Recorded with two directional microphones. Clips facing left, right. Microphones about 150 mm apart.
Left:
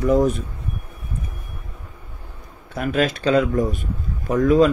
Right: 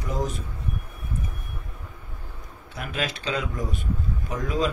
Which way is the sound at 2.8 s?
50° left (ahead or behind).